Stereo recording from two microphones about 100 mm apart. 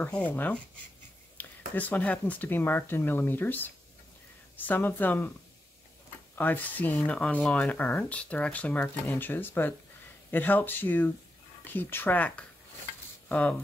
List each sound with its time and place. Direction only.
0.0 s speech: 15° left (ahead or behind)
6.3 s speech: 20° left (ahead or behind)
9.0 s speech: 25° left (ahead or behind)